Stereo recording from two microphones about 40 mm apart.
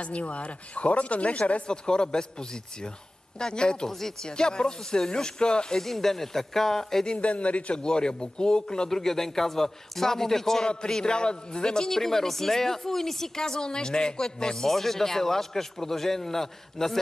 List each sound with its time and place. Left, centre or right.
0.0 s speech: left
3.9 s a man's voice: centre
4.3 s speech: left
5.8 s a man's voice: centre
7.2 s speech: left
7.7 s speech: left
8.9 s a man's voice: centre